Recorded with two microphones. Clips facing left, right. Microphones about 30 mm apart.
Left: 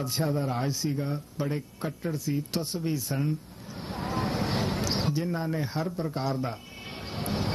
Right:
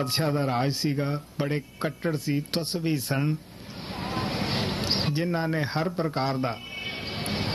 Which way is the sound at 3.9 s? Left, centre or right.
Right.